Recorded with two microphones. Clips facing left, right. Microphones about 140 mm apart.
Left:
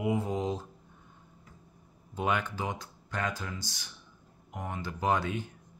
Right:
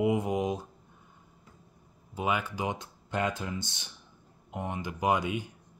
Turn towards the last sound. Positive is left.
turn(degrees=-10)  # may be behind; listen again after turning